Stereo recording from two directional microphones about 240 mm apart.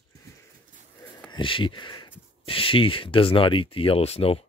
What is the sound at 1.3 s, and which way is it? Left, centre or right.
Speech, left.